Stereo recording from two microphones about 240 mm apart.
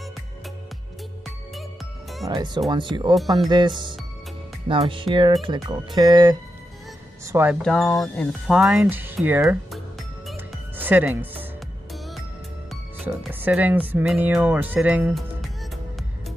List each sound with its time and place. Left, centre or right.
2.2 s speech: centre
7.6 s speech: centre
10.2 s music: centre
13.0 s speech: centre